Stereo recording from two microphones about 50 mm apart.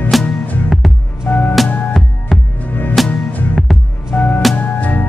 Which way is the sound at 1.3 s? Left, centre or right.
Left.